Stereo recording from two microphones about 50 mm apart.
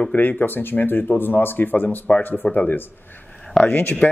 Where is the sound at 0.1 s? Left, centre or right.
Left.